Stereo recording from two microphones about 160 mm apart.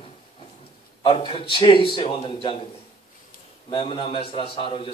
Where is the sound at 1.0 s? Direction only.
35° left (ahead or behind).